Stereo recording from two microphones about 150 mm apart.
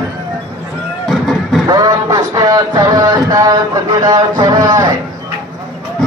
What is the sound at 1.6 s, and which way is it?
A man's voice, 25° right (ahead or behind).